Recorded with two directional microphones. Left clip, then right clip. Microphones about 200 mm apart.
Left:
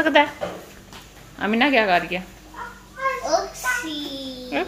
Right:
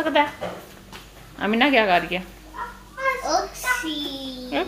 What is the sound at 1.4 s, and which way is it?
Speech, 5° left (ahead or behind).